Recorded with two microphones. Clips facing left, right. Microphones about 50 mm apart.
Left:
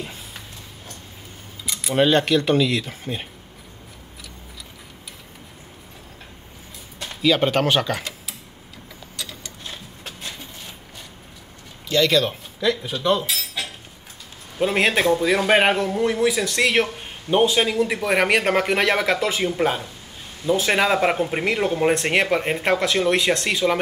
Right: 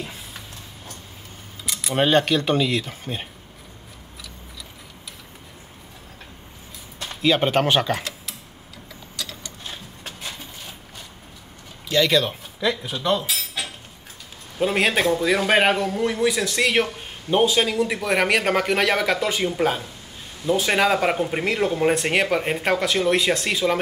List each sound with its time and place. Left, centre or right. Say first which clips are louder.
1.7 s camera: left 1 dB; centre
2.0 s speech: left 1 dB; right
7.0 s a sound: even; centre
7.2 s speech: even; centre
9.1 s a sound: right 1 dB; centre
9.7 s sewing machine: even; centre
11.9 s a man's voice: left 1 dB; centre